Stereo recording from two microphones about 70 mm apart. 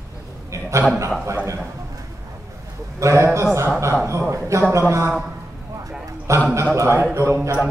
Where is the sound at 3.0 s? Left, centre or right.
Right.